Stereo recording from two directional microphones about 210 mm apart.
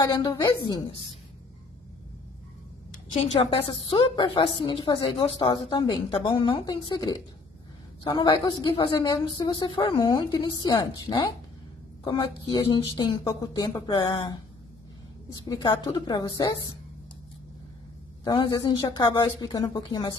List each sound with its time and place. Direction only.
0.1 s a woman's voice: 20° left (ahead or behind)
2.9 s a woman's voice: 35° left (ahead or behind)
15.3 s a woman's voice: 20° left (ahead or behind)
18.2 s a woman's voice: 25° left (ahead or behind)